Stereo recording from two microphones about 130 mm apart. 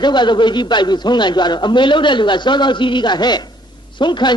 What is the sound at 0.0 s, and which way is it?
A man's voice, 35° left (ahead or behind).